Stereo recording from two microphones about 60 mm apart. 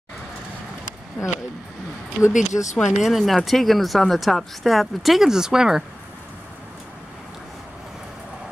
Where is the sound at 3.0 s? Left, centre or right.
Centre.